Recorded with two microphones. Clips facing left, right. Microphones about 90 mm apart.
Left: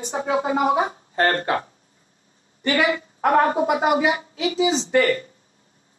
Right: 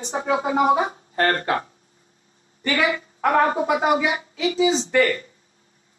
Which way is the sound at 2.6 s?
30° left (ahead or behind).